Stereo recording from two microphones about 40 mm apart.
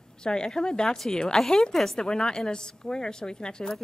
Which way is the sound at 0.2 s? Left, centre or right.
Centre.